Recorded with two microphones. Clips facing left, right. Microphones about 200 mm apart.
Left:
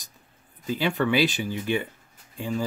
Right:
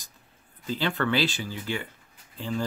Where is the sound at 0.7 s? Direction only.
10° left (ahead or behind).